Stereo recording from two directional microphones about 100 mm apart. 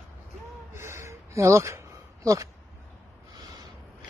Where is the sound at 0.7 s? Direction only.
25° right (ahead or behind).